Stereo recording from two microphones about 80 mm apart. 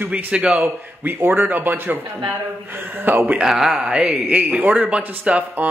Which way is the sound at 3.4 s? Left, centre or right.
Centre.